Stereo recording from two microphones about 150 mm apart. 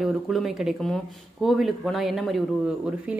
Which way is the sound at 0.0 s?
Centre (ahead or behind).